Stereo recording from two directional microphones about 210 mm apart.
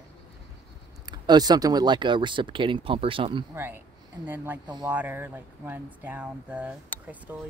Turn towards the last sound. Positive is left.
turn(degrees=-5)  # may be behind; listen again after turning